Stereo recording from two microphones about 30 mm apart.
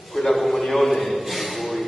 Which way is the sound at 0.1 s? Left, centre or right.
Centre.